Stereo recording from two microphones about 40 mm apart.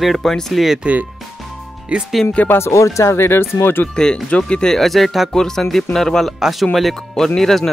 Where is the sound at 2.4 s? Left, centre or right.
Left.